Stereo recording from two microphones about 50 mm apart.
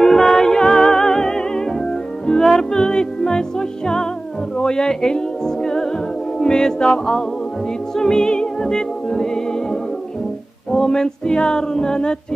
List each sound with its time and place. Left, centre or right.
0.0 s music: centre
4.6 s female singing: centre
7.9 s music: centre
10.7 s female singing: centre